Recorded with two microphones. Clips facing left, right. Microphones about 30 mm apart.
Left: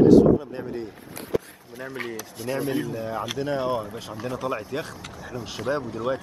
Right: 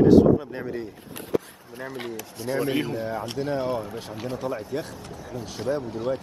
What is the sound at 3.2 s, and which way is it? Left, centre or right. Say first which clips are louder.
Speech: left 1 dB; left.